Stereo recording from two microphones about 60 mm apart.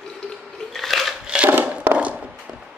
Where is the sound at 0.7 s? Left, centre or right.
Centre.